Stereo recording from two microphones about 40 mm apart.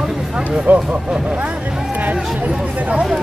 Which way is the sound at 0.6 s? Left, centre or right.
Right.